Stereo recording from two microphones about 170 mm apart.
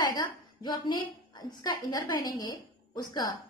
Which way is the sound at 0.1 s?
25° left (ahead or behind).